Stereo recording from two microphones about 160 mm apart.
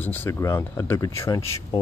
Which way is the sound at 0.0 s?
15° left (ahead or behind).